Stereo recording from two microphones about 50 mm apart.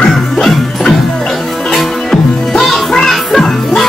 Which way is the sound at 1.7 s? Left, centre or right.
Centre.